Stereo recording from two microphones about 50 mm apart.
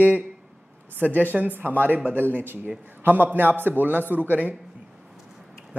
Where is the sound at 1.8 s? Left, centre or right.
Right.